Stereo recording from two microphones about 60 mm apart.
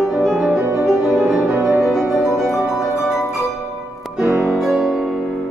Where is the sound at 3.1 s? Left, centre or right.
Centre.